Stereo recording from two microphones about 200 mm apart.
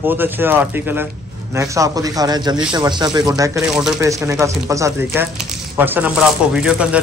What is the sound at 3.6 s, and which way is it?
Speech, 5° right (ahead or behind).